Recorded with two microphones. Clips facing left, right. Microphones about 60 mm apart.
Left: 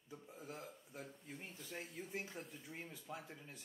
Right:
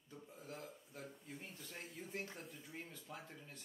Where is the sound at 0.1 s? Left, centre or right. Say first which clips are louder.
Left 1 dB; centre.